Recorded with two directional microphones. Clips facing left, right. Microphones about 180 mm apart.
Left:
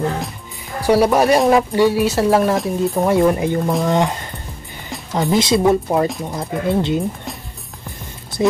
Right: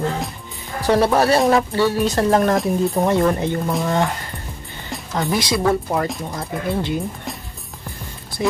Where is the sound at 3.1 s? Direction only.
10° left (ahead or behind).